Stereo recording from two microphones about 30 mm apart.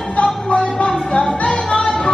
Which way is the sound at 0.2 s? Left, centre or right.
Left.